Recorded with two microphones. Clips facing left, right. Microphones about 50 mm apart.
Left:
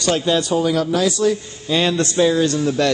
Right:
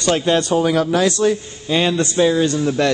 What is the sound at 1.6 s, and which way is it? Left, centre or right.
A man's voice, centre.